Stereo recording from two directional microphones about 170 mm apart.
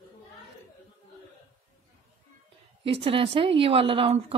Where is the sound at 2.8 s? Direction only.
35° right (ahead or behind).